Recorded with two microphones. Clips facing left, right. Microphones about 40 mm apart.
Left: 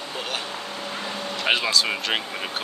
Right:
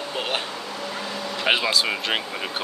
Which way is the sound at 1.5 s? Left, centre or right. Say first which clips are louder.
Right 1 dB; centre.